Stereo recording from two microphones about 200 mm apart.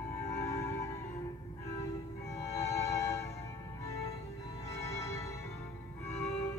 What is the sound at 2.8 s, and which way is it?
Music, 15° left (ahead or behind).